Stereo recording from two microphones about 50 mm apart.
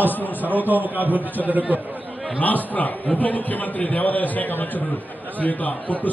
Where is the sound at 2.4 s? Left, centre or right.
Left.